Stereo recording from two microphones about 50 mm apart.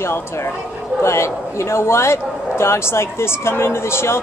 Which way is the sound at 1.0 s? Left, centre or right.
Left.